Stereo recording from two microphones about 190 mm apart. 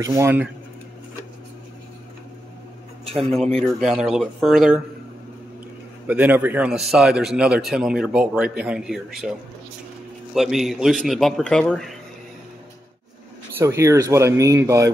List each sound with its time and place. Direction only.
0.0 s speech: 15° right (ahead or behind)
3.2 s a man's voice: centre (ahead or behind)
6.0 s a man's voice: 10° right (ahead or behind)
10.3 s a man's voice: centre (ahead or behind)
13.6 s speech: 15° right (ahead or behind)